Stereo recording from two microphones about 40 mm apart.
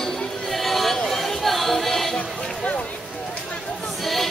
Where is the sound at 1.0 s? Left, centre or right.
Centre.